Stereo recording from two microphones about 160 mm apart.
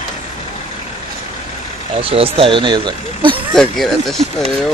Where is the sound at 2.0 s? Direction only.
35° right (ahead or behind).